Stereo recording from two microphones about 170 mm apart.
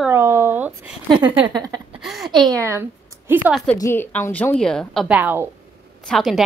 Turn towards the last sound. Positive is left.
turn(degrees=0)  # may be behind; listen again after turning